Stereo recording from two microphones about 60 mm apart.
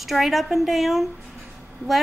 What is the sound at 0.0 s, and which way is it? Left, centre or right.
A woman's voice, centre.